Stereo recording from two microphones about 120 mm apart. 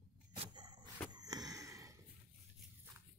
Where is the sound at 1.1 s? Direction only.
35° right (ahead or behind).